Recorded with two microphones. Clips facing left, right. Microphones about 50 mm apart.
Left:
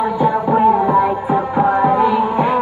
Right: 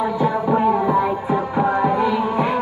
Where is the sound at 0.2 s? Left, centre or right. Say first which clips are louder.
Left 5 dB; left.